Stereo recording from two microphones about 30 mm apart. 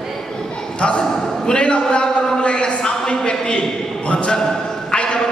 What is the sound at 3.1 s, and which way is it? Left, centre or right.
Speech, left.